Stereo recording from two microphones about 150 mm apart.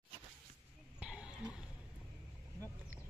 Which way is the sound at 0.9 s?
5° right (ahead or behind).